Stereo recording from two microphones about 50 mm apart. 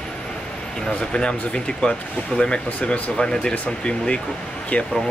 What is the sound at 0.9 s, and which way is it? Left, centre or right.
Speech, left.